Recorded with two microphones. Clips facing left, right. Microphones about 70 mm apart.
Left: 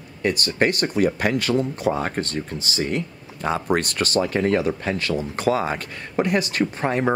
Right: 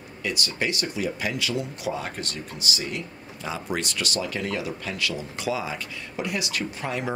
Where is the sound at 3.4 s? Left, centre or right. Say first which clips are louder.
Left 8 dB; left.